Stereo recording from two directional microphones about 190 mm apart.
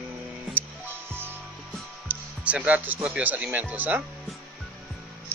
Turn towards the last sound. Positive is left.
turn(degrees=-10)  # may be behind; listen again after turning